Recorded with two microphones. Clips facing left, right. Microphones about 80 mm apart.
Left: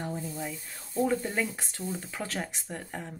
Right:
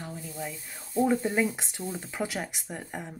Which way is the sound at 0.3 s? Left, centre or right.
Centre.